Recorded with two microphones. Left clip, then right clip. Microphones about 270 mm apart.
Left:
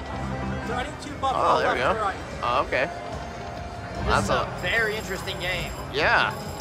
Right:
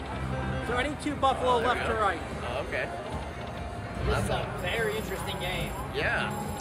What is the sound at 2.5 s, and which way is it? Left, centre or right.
Speech, centre.